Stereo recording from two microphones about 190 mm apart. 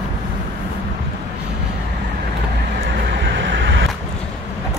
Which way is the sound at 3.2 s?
70° right (ahead or behind).